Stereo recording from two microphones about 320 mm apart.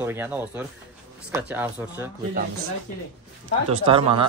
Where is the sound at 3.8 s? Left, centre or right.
Centre.